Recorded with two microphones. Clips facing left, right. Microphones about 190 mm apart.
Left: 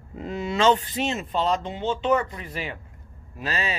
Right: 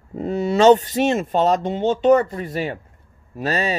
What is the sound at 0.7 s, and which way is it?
Speech, 45° right (ahead or behind).